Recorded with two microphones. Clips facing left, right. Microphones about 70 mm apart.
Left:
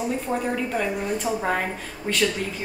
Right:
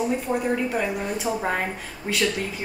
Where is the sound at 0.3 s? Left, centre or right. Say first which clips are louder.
Right 1 dB; centre.